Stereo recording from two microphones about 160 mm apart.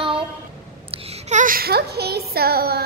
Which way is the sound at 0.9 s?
40° right (ahead or behind).